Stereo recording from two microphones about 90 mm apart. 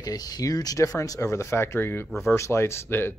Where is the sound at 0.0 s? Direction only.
45° left (ahead or behind).